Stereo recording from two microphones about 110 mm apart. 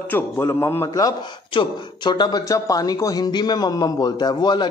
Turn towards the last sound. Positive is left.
turn(degrees=40)  # may be behind; listen again after turning